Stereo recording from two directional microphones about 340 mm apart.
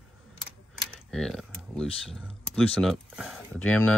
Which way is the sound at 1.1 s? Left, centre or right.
Centre.